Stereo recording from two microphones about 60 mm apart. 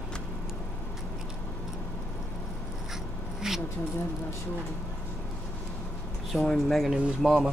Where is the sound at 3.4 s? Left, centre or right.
Centre.